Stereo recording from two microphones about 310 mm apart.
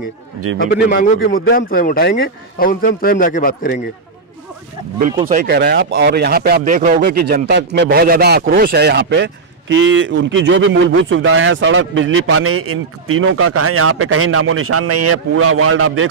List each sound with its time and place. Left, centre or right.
0.8 s a man's voice: left
5.3 s speech: right